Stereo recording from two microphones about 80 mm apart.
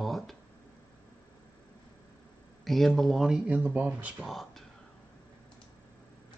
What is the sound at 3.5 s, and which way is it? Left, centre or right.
Speech, centre.